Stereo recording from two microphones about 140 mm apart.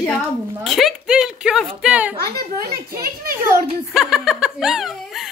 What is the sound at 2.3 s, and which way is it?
Speech, 90° right.